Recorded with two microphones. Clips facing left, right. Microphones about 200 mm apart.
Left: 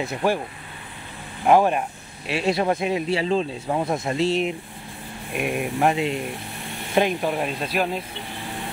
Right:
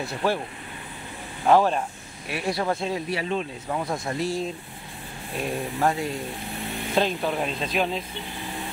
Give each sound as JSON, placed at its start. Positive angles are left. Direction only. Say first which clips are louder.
{"t": 0.0, "sound": "speech", "louder": "left 3 dB", "side_deg": 15}
{"t": 1.4, "sound": "speech", "louder": "left 2 dB", "side_deg": 15}
{"t": 2.2, "sound": "speech", "louder": "left 4 dB", "side_deg": 25}